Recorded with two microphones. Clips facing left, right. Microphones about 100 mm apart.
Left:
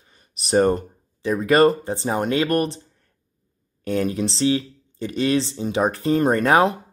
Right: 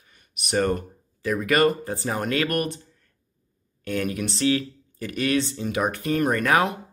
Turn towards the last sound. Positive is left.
turn(degrees=30)  # may be behind; listen again after turning